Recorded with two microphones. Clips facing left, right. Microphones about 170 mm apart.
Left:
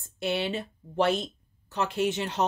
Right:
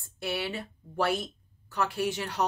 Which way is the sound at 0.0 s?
20° left (ahead or behind).